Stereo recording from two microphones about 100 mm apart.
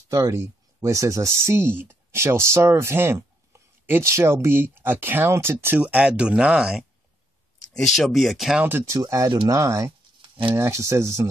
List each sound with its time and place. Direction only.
0.1 s speech: 30° right (ahead or behind); by 8.6 s 5° right (ahead or behind)
8.6 s speech: 20° right (ahead or behind)
8.9 s speech: 30° right (ahead or behind)